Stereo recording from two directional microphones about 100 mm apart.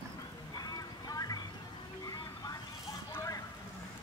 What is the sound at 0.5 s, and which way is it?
Music, 40° left (ahead or behind).